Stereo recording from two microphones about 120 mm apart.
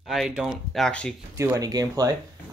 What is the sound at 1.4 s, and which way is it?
Speech, 25° right (ahead or behind).